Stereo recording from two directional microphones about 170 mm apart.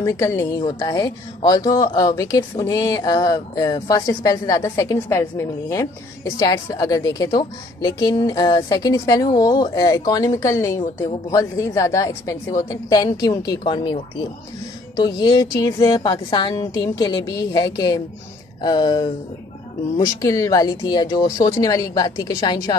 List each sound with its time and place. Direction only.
0.0 s a woman's voice: 15° left (ahead or behind)
15.0 s speech: 25° left (ahead or behind)